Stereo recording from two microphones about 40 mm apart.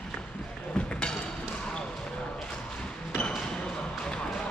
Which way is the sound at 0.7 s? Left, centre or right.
Left.